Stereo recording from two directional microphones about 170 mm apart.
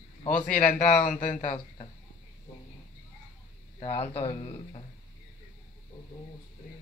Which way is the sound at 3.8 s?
35° left (ahead or behind).